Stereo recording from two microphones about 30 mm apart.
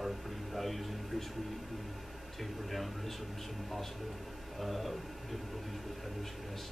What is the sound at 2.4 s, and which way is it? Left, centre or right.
Speech, centre.